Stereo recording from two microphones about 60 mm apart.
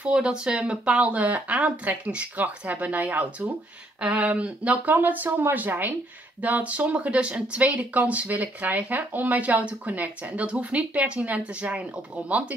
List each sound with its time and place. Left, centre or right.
0.0 s speech: centre